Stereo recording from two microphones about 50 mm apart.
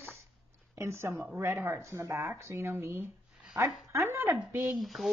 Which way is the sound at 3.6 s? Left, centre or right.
Right.